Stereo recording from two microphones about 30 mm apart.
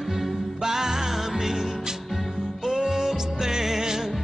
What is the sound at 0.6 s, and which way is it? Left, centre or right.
Music, centre.